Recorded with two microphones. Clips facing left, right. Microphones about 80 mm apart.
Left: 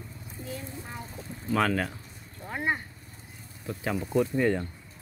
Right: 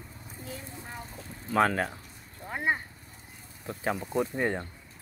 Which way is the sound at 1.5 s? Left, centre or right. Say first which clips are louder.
Right 1 dB; right.